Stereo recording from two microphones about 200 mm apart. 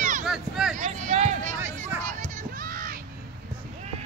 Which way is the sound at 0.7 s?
35° right (ahead or behind).